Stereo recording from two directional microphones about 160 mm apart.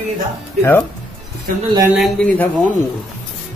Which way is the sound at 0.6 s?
15° left (ahead or behind).